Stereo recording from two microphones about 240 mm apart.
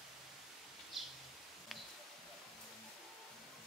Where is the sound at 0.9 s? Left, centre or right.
Centre.